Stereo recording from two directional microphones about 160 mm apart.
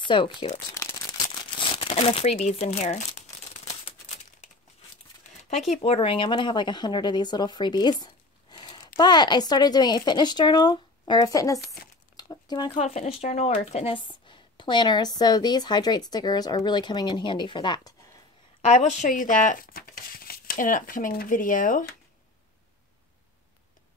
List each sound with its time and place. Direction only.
0.0 s speech: 30° left (ahead or behind)
1.6 s speech: 35° left (ahead or behind)
5.3 s a sound: 45° left (ahead or behind)
5.7 s speech: 35° left (ahead or behind); by 11.6 s 20° left (ahead or behind)
12.2 s a sound: 25° left (ahead or behind)
12.7 s speech: 45° left (ahead or behind); by 17.9 s 30° left (ahead or behind)
18.6 s speech: 45° left (ahead or behind)